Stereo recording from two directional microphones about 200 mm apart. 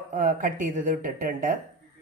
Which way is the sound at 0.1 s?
40° right (ahead or behind).